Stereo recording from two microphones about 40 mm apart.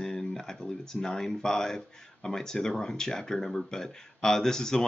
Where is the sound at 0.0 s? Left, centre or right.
Centre.